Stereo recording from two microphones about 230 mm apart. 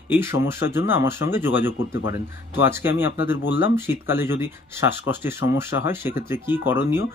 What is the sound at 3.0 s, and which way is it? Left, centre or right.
Speech, centre.